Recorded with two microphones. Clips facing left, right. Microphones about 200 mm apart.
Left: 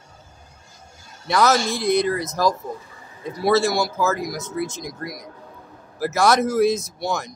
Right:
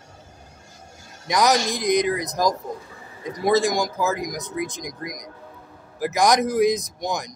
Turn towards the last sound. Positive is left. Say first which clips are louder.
# left 2 dB
turn(degrees=-15)  # may be behind; listen again after turning